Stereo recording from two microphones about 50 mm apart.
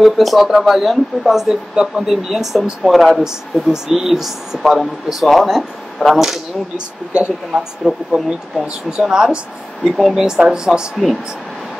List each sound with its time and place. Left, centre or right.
0.0 s speech: centre
7.1 s a woman's voice: right
9.0 s speech: centre
10.2 s speech: centre